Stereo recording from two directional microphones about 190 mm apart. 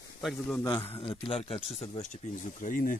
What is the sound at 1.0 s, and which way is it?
Speech, 25° left (ahead or behind).